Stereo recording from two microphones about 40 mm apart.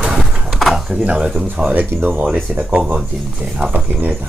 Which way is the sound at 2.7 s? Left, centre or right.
Right.